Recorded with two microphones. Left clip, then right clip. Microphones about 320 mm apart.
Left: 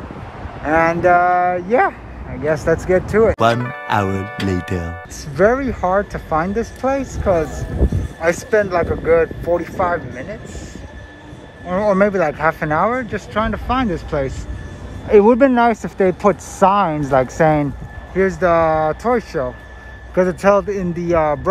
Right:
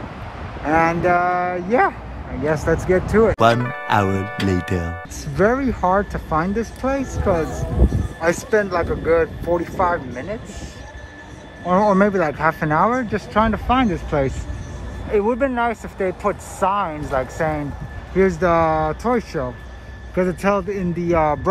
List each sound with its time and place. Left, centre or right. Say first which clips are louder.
0.7 s speech: left 3 dB; centre
11.6 s speech: left 1 dB; centre
15.0 s speech: left 8 dB; left
18.1 s speech: left 2 dB; centre